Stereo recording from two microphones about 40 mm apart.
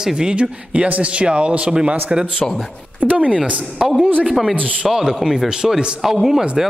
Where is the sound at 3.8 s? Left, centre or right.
Centre.